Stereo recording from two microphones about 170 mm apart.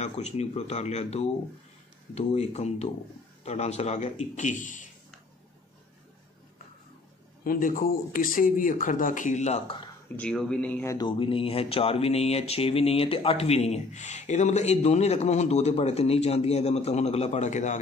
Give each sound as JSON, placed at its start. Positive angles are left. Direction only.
{"t": 0.0, "sound": "speech", "side_deg": 40}
{"t": 7.4, "sound": "speech", "side_deg": 50}
{"t": 10.0, "sound": "speech", "side_deg": 5}
{"t": 11.1, "sound": "speech", "side_deg": 30}